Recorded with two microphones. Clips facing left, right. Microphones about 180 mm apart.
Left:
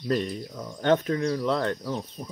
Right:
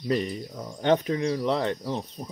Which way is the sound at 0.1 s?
15° right (ahead or behind).